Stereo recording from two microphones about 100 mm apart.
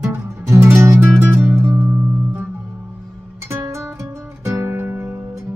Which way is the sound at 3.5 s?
25° right (ahead or behind).